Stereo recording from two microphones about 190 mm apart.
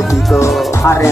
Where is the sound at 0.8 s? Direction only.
15° left (ahead or behind).